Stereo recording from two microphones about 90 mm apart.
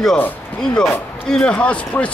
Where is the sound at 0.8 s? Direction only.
10° left (ahead or behind).